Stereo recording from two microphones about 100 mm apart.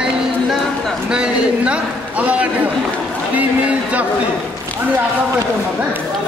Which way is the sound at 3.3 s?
15° right (ahead or behind).